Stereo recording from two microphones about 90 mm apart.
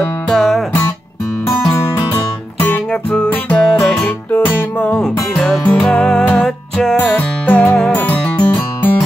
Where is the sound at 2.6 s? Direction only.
15° left (ahead or behind).